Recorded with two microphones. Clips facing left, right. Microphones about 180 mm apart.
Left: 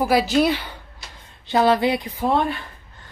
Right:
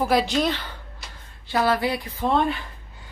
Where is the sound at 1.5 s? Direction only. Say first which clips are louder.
Left 4 dB; 20° left (ahead or behind).